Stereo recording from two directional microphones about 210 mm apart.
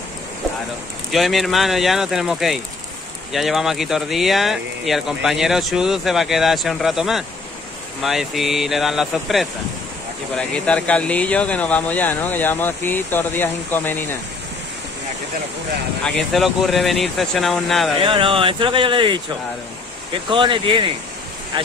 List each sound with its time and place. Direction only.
1.1 s speech: centre (ahead or behind)
16.0 s speech: centre (ahead or behind)
18.0 s speech: 25° right (ahead or behind)
20.2 s speech: 25° right (ahead or behind)